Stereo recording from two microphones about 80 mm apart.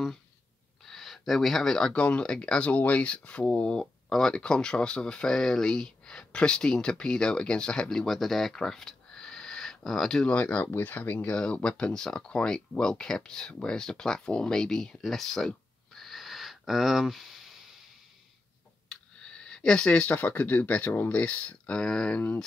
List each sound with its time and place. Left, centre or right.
0.8 s speech: centre
10.3 s speech: centre
19.2 s speech: centre